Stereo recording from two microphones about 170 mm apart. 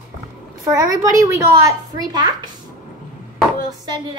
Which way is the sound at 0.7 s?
20° right (ahead or behind).